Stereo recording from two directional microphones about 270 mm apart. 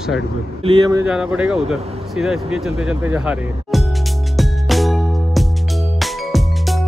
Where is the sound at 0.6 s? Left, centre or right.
Centre.